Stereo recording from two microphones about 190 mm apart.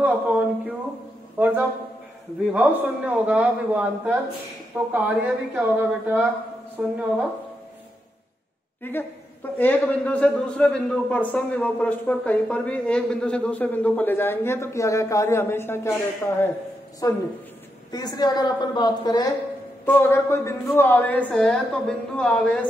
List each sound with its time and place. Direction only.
0.0 s a sound: 5° right (ahead or behind)
2.5 s a man's voice: 5° right (ahead or behind)
8.8 s a man's voice: 10° left (ahead or behind)
19.8 s a man's voice: 10° left (ahead or behind)